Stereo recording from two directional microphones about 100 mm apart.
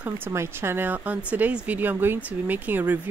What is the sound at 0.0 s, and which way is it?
Speech, 25° right (ahead or behind).